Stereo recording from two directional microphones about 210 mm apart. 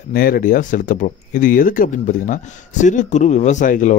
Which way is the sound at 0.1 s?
45° left (ahead or behind).